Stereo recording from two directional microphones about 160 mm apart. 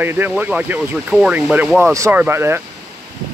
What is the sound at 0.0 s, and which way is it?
Speech, 15° right (ahead or behind).